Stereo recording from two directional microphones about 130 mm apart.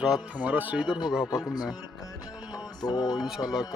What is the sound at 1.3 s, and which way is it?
Speech, 30° left (ahead or behind).